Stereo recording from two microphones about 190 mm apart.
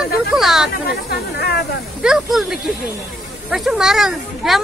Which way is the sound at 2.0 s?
5° right (ahead or behind).